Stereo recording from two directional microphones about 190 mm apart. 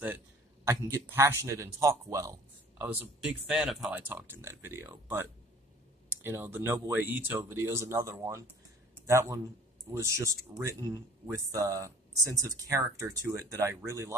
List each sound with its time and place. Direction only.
0.7 s speech: 10° right (ahead or behind)